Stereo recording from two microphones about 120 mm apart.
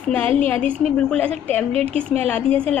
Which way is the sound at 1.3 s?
60° right (ahead or behind).